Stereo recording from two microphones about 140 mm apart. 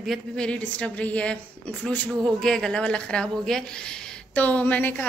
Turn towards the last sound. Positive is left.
turn(degrees=10)  # may be behind; listen again after turning